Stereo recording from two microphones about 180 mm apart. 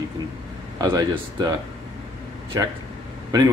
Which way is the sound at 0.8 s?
20° right (ahead or behind).